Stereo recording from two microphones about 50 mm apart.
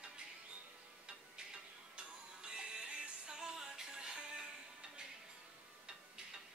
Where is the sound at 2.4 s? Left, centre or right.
Centre.